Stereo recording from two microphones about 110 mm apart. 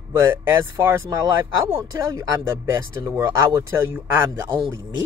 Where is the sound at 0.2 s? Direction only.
20° right (ahead or behind).